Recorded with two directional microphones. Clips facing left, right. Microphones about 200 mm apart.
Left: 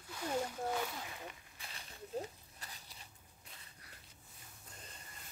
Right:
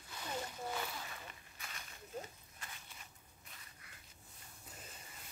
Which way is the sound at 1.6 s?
30° left (ahead or behind).